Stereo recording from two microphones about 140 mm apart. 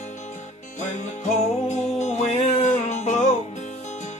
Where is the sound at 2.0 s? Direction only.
55° left (ahead or behind).